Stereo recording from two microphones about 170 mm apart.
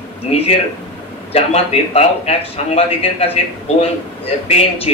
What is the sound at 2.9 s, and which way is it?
A man's voice, 35° left (ahead or behind).